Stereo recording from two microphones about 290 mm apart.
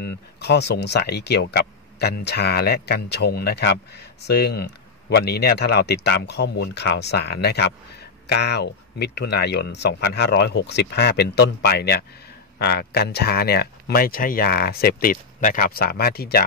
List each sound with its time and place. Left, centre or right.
0.0 s speech: left